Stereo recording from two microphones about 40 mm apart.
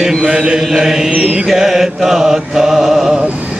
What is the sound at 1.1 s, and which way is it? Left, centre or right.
Music, right.